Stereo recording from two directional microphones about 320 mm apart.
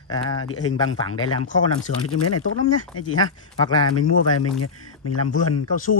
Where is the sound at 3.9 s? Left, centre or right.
Left.